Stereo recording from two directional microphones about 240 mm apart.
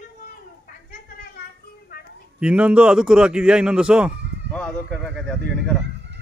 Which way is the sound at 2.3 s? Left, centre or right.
Centre.